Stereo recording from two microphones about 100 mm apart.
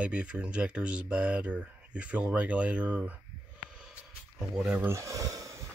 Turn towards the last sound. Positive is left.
turn(degrees=-35)  # may be behind; listen again after turning